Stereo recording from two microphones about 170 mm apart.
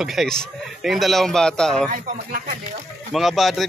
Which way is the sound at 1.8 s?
50° right (ahead or behind).